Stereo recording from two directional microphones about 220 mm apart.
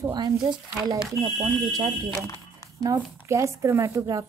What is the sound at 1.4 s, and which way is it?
Speech, 15° right (ahead or behind).